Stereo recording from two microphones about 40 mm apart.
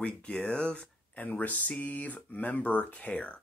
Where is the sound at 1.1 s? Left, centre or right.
Left.